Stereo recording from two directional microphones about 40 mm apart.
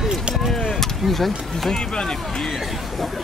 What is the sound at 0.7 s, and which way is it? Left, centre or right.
Speech, centre.